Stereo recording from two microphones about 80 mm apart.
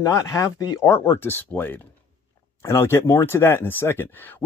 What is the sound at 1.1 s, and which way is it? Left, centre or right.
Speech, left.